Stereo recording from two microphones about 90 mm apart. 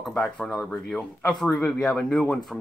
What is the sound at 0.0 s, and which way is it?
Speech, 5° left (ahead or behind).